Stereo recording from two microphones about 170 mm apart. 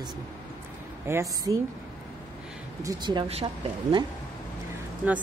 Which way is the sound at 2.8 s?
20° right (ahead or behind).